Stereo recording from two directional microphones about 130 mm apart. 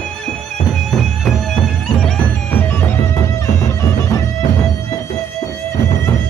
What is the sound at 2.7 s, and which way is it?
Bagpipes, 15° left (ahead or behind).